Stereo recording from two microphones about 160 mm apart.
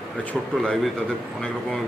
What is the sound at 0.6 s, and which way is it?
Speech, centre (ahead or behind).